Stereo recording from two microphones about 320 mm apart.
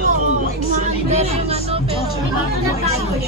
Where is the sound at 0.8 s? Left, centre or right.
Centre.